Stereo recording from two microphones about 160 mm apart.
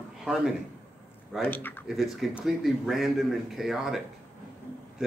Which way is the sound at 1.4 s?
10° left (ahead or behind).